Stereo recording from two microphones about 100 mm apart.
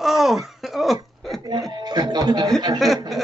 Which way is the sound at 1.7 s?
40° right (ahead or behind).